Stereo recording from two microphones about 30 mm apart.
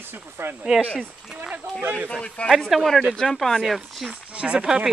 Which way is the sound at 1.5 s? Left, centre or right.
Right.